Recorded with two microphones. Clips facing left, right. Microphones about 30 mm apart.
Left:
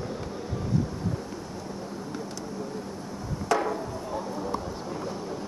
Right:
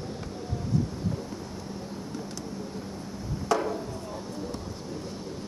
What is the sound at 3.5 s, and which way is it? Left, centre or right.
Chop, centre.